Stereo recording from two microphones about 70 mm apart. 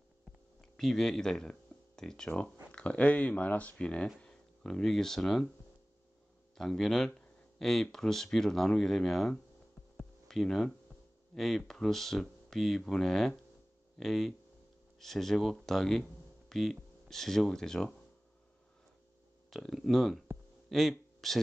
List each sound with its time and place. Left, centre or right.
0.6 s speech: centre
4.2 s a sound: centre
4.8 s speech: centre
6.5 s speech: centre
9.9 s a sound: centre
11.3 s speech: centre
19.5 s speech: centre